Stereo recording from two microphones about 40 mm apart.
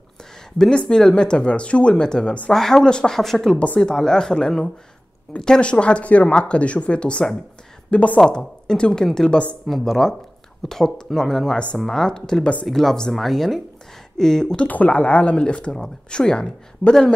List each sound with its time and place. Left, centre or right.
0.8 s speech: centre
3.2 s speech: centre
3.5 s speech: left
3.8 s speech: centre
5.6 s speech: left
9.7 s speech: centre
14.7 s speech: left